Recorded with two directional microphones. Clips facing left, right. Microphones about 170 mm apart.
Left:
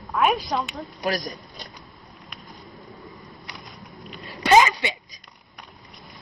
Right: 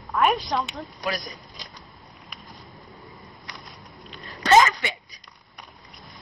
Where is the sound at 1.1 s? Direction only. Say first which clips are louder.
Left 4 dB; 40° left (ahead or behind).